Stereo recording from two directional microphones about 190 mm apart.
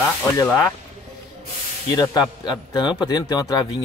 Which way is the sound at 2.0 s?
20° left (ahead or behind).